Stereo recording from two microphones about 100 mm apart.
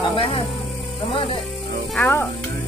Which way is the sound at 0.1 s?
70° left (ahead or behind).